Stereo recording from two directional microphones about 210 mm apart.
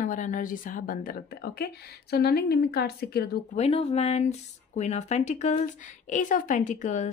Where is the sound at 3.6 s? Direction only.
30° left (ahead or behind).